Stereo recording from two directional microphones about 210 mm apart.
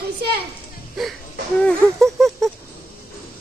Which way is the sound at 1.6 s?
Centre (ahead or behind).